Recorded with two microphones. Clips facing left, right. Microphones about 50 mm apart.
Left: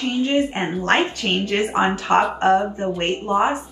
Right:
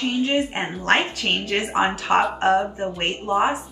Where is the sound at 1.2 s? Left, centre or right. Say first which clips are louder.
Left 3 dB; centre.